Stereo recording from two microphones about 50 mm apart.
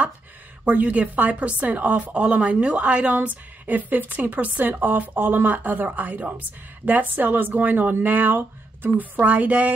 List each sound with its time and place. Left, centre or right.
0.7 s a woman's voice: right